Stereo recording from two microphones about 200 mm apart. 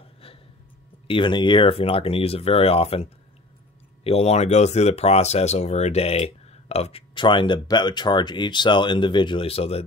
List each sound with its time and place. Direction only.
1.0 s speech: 25° left (ahead or behind)